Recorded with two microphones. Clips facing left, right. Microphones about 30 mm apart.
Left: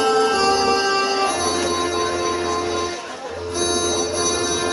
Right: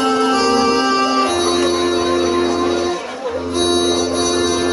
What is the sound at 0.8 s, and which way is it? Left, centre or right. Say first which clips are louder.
Music: right 4 dB; right.